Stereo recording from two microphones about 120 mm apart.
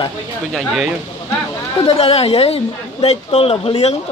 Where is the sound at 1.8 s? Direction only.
55° left (ahead or behind).